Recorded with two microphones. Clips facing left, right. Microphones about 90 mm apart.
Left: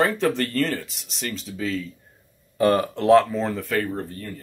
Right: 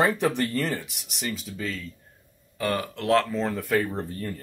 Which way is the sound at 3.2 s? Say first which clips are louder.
Left 2 dB; 5° left (ahead or behind).